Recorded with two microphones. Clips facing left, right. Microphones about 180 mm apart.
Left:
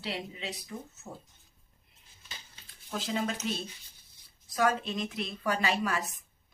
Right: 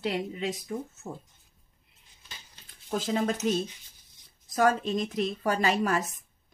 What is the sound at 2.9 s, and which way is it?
Speech, 45° right (ahead or behind).